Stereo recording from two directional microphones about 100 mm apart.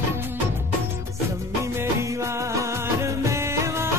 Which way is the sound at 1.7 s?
25° right (ahead or behind).